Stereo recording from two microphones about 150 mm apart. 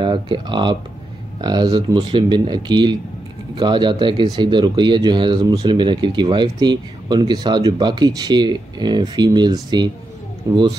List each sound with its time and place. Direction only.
0.0 s speech: 30° right (ahead or behind)